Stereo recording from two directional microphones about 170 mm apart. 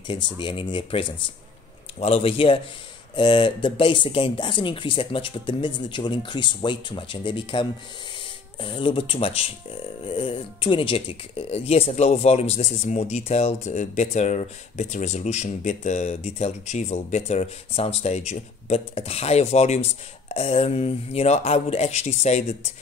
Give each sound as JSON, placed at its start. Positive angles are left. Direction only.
{"t": 0.1, "sound": "speech", "side_deg": 25}